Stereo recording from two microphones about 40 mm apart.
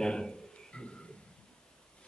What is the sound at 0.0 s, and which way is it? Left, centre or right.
Speech, centre.